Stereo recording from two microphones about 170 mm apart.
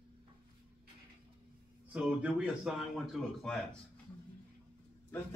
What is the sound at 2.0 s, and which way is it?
Speech, 5° right (ahead or behind).